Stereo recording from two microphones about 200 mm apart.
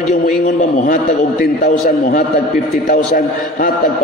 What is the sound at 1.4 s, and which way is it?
A man's voice, 50° left (ahead or behind).